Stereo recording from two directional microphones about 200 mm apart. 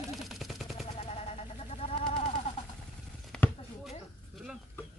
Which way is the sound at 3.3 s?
5° left (ahead or behind).